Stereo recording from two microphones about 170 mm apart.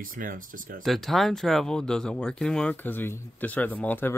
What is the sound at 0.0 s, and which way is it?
Speech, 55° right (ahead or behind).